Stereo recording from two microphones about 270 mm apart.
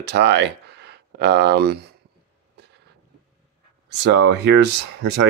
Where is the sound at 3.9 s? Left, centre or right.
Right.